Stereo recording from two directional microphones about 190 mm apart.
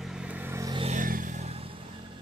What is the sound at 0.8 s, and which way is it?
Vehicle, 40° right (ahead or behind).